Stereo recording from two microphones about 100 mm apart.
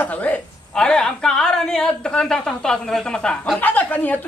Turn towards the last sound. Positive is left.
turn(degrees=15)  # may be behind; listen again after turning